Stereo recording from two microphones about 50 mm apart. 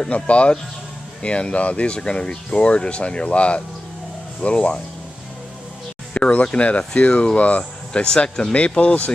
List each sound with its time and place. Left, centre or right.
0.0 s speech: left
6.1 s speech: left